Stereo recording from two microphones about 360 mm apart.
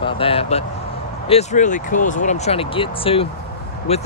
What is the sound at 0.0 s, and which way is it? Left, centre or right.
Speech, centre.